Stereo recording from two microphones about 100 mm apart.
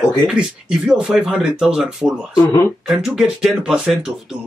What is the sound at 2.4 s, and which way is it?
Speech, 30° left (ahead or behind).